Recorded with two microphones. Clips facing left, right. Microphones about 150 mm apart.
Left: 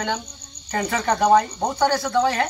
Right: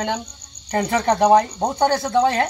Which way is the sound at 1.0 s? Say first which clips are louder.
Right 2 dB; 15° right (ahead or behind).